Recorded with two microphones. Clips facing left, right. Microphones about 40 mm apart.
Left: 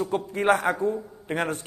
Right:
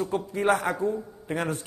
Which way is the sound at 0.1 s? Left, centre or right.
Left.